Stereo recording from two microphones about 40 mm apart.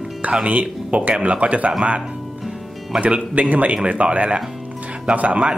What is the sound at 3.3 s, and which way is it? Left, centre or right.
A man's voice, right.